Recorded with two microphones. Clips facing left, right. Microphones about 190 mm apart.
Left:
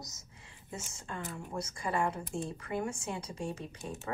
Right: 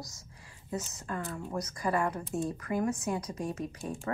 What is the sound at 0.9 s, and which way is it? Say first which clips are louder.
A woman's voice: right 4 dB; 25° left (ahead or behind).